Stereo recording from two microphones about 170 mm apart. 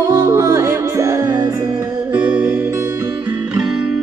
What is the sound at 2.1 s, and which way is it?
Music, 10° right (ahead or behind).